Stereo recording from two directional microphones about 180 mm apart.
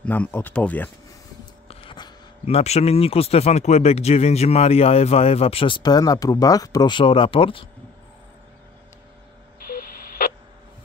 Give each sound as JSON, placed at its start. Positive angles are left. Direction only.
{"t": 0.0, "sound": "speech", "side_deg": 10}
{"t": 1.4, "sound": "speech", "side_deg": 30}
{"t": 9.6, "sound": "a sound", "side_deg": 50}